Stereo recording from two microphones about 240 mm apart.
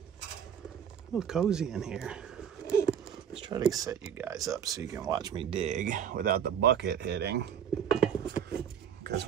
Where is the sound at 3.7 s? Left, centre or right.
Centre.